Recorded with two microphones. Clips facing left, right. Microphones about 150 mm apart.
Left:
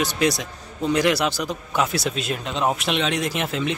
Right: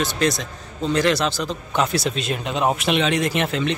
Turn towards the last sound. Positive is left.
turn(degrees=0)  # may be behind; listen again after turning